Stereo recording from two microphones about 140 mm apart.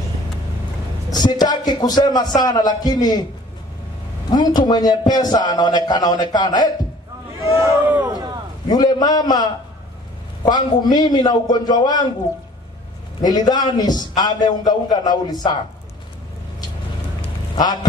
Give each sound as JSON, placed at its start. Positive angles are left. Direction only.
{"t": 1.1, "sound": "a man's voice", "side_deg": 30}
{"t": 4.3, "sound": "a man's voice", "side_deg": 30}
{"t": 7.3, "sound": "speech", "side_deg": -20}
{"t": 8.6, "sound": "a man's voice", "side_deg": 30}
{"t": 13.2, "sound": "a man's voice", "side_deg": 30}